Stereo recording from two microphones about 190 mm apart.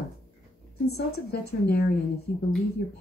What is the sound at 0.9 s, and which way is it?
A woman's voice, 55° left (ahead or behind).